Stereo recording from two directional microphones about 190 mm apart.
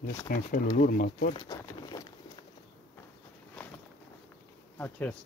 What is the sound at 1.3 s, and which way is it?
Boat, 20° left (ahead or behind).